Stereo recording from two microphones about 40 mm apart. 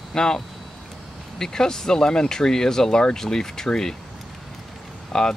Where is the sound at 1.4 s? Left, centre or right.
Centre.